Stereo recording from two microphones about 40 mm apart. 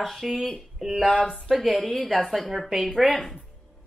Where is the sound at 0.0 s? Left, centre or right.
Centre.